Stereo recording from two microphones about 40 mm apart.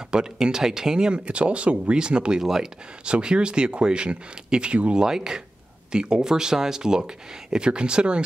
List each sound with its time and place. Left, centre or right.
0.1 s speech: centre
2.4 s speech: centre
3.1 s speech: right